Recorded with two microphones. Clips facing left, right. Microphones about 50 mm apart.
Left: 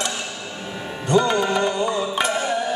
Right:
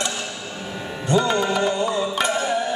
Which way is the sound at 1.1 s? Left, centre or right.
Centre.